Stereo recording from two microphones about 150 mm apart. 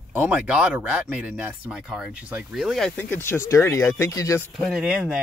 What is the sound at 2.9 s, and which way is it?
Speech, 10° left (ahead or behind).